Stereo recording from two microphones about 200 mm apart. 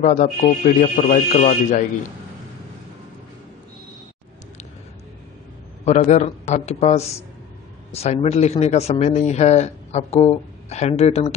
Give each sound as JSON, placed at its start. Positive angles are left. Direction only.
{"t": 0.0, "sound": "speech", "side_deg": 40}
{"t": 5.9, "sound": "speech", "side_deg": 35}